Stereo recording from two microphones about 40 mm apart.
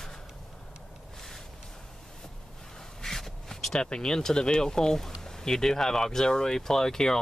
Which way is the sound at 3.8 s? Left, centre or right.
Left.